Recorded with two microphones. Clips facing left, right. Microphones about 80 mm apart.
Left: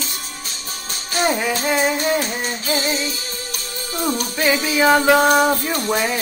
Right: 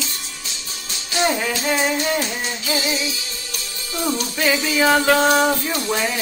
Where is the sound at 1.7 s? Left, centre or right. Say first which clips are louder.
Left 1 dB; centre.